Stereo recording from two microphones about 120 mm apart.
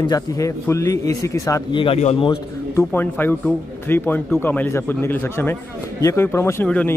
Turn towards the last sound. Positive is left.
turn(degrees=10)  # may be behind; listen again after turning